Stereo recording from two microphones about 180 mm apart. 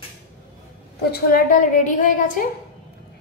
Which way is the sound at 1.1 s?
50° left (ahead or behind).